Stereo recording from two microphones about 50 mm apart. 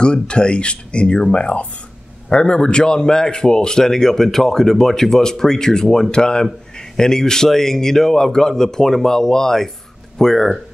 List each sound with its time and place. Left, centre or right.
0.0 s a man's voice: centre